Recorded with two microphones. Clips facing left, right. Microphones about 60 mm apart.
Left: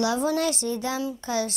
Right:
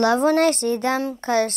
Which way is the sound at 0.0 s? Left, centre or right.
Right.